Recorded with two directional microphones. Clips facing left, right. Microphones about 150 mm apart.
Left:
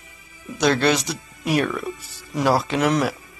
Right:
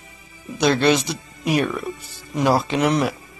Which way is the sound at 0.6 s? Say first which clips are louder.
Right 1 dB; 15° right (ahead or behind).